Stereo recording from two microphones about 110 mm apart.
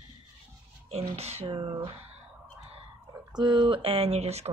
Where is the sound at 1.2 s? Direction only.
75° right (ahead or behind).